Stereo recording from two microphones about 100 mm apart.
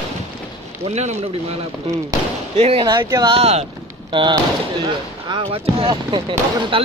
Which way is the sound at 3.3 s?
90° right.